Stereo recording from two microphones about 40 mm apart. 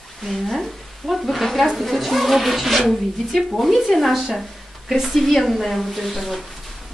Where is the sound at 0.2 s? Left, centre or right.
Centre.